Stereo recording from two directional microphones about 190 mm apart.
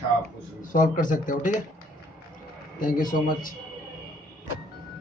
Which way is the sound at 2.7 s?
45° left (ahead or behind).